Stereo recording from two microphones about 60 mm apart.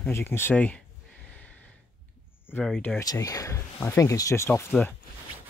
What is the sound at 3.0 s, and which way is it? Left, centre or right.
Speech, left.